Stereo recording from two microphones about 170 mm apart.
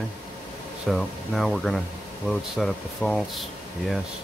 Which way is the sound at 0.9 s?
Centre (ahead or behind).